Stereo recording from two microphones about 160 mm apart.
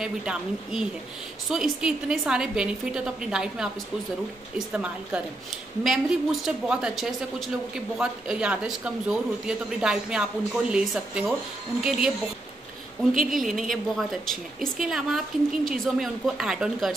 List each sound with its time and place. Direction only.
0.0 s a woman's voice: 5° right (ahead or behind)
13.1 s a woman's voice: 55° right (ahead or behind)
13.4 s a woman's voice: centre (ahead or behind)